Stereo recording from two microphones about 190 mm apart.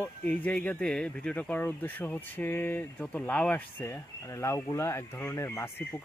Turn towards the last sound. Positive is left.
turn(degrees=15)  # may be behind; listen again after turning